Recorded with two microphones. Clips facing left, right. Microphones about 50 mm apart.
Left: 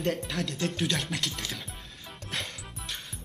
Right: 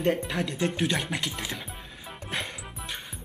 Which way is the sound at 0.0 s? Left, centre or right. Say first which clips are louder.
Right 4 dB; centre.